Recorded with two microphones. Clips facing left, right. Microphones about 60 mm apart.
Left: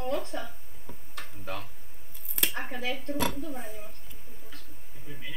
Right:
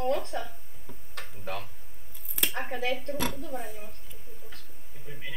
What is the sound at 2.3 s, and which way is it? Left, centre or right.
Speech, centre.